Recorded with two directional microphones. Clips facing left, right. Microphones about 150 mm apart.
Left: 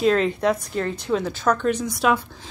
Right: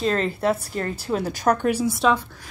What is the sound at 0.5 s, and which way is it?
Speech, 40° right (ahead or behind).